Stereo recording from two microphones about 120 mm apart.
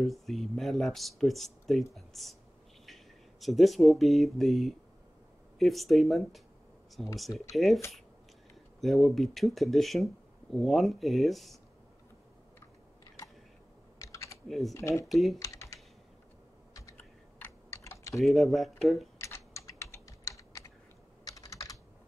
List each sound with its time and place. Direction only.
0.0 s speech: centre (ahead or behind)
8.8 s speech: centre (ahead or behind)
13.9 s typing: 25° left (ahead or behind)
14.7 s speech: 25° left (ahead or behind)
15.0 s speech: centre (ahead or behind)
15.4 s typing: 25° left (ahead or behind)
16.9 s typing: 20° left (ahead or behind)
18.2 s speech: centre (ahead or behind)
19.2 s typing: 25° left (ahead or behind)